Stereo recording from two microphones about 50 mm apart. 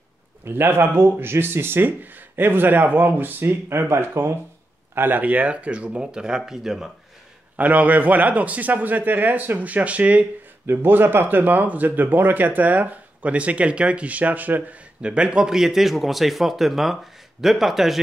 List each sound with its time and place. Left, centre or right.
0.5 s speech: right
4.9 s speech: right
5.2 s speech: right; by 6.9 s centre
7.5 s speech: right
10.7 s speech: right
15.0 s speech: right; by 18.0 s centre